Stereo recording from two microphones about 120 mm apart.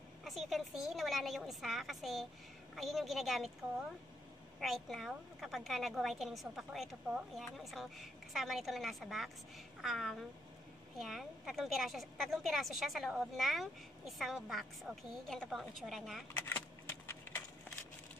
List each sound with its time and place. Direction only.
0.2 s a woman's voice: centre (ahead or behind)
4.6 s a woman's voice: centre (ahead or behind)
16.3 s keys jangling: 20° left (ahead or behind)